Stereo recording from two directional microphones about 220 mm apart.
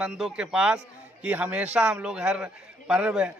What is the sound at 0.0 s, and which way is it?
A man's voice, 5° right (ahead or behind).